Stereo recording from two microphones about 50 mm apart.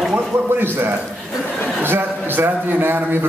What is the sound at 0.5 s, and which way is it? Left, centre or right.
A man's voice, right.